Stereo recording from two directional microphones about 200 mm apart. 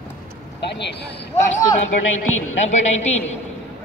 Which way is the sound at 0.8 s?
60° left (ahead or behind).